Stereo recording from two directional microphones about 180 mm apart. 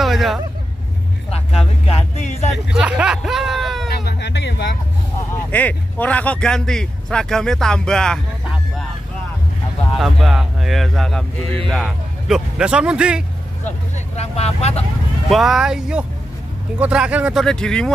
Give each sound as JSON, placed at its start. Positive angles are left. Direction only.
{"t": 0.0, "sound": "vehicle", "side_deg": 0}
{"t": 1.3, "sound": "speech", "side_deg": 35}
{"t": 2.5, "sound": "speech", "side_deg": -5}
{"t": 3.9, "sound": "a sound", "side_deg": 70}
{"t": 5.5, "sound": "speech", "side_deg": 10}
{"t": 9.9, "sound": "speech", "side_deg": 0}
{"t": 13.9, "sound": "speech", "side_deg": 35}
{"t": 15.2, "sound": "speech", "side_deg": 0}